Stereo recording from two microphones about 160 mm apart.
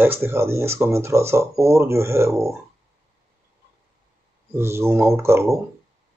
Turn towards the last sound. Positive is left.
turn(degrees=-15)  # may be behind; listen again after turning